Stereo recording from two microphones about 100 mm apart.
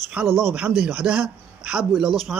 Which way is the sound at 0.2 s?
10° right (ahead or behind).